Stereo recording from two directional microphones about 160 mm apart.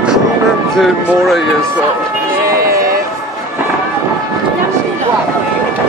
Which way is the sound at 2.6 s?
65° right (ahead or behind).